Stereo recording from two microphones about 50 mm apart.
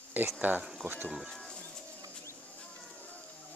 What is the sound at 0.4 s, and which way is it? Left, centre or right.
Speech, right.